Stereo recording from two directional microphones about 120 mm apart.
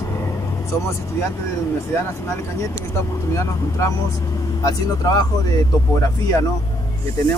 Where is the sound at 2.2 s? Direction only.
20° left (ahead or behind).